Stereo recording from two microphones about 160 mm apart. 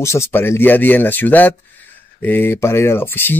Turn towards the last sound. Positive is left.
turn(degrees=15)  # may be behind; listen again after turning